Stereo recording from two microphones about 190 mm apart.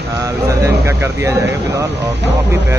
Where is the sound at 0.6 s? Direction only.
15° right (ahead or behind).